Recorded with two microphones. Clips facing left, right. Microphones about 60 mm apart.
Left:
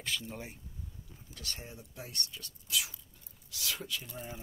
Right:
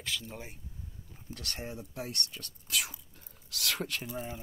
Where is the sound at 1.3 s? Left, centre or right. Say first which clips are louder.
Right 6 dB; right.